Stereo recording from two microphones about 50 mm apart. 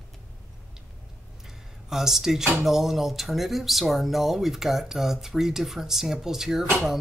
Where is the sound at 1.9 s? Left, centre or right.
Centre.